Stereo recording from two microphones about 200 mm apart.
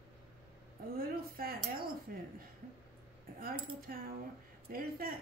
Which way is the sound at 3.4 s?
45° right (ahead or behind).